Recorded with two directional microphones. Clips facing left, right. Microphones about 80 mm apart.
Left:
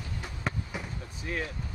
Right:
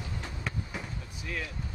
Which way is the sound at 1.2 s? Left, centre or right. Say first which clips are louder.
Left 3 dB; left.